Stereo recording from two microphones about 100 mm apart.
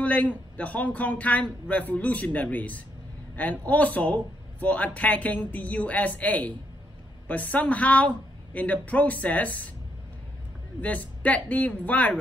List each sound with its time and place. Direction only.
0.0 s a man's voice: 15° left (ahead or behind)
10.8 s a man's voice: 15° left (ahead or behind)